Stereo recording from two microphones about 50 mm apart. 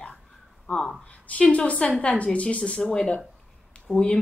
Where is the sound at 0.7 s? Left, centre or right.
Centre.